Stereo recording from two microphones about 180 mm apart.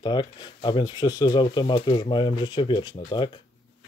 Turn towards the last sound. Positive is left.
turn(degrees=25)  # may be behind; listen again after turning